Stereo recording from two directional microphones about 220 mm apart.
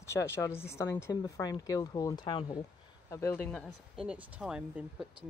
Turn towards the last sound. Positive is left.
turn(degrees=-5)  # may be behind; listen again after turning